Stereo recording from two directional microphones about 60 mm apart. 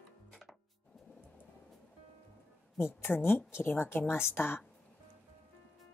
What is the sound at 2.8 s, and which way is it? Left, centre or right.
A woman's voice, left.